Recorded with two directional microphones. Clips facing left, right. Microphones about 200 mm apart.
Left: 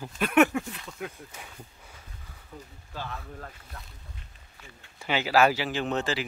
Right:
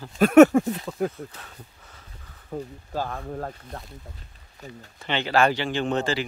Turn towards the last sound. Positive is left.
turn(degrees=0)  # may be behind; listen again after turning